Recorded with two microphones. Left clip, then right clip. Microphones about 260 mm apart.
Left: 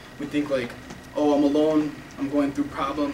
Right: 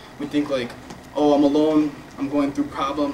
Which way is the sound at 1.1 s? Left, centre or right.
Left.